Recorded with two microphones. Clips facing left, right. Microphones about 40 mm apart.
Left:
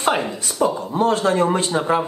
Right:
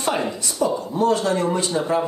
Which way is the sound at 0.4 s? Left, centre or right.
Left.